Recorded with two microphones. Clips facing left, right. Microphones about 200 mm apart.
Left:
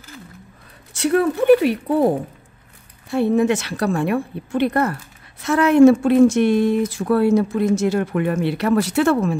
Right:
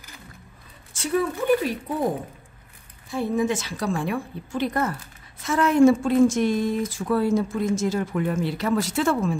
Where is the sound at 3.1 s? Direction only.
70° left (ahead or behind).